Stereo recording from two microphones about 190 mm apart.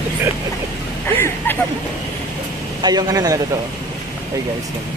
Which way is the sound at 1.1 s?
10° left (ahead or behind).